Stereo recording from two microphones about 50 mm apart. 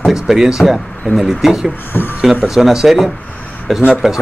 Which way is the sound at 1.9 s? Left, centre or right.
Left.